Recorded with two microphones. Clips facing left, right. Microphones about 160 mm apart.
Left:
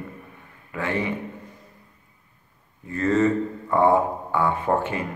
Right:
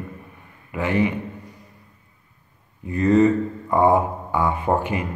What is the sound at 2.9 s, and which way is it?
Speech, 15° right (ahead or behind).